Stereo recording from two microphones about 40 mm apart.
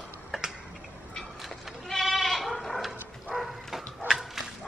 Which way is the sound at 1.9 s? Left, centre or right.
Centre.